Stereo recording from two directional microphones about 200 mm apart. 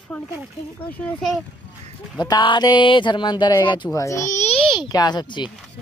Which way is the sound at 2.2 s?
20° left (ahead or behind).